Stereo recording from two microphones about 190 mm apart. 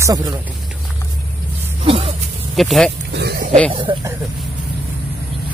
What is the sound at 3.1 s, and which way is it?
Pig, 60° right (ahead or behind).